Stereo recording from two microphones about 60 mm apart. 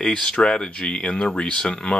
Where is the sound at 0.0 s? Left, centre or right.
Centre.